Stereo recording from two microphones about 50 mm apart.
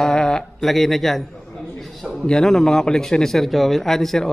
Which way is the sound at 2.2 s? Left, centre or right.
Centre.